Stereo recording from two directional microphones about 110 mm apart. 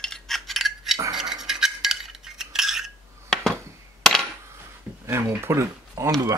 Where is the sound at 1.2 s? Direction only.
5° right (ahead or behind).